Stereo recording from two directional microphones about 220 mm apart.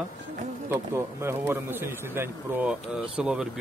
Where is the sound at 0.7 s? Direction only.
10° right (ahead or behind).